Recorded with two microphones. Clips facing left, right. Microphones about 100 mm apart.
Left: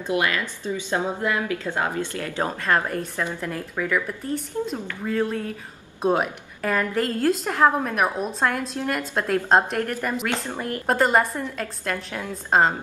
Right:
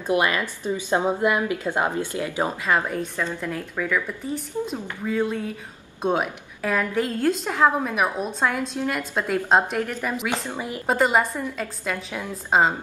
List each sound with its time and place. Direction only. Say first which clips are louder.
0.1 s a woman's voice: right 2 dB; 25° right (ahead or behind); by 12.7 s 5° right (ahead or behind)